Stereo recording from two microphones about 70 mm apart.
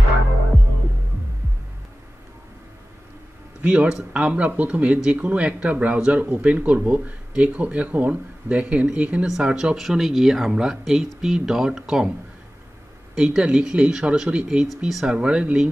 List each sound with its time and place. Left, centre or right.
3.6 s speech: centre
13.1 s speech: centre